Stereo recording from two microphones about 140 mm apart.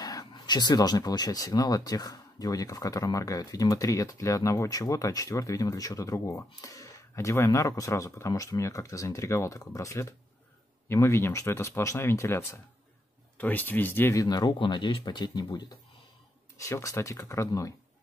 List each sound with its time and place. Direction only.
0.0 s speech: 25° left (ahead or behind)
14.2 s speech: 30° left (ahead or behind)
16.6 s speech: 20° left (ahead or behind)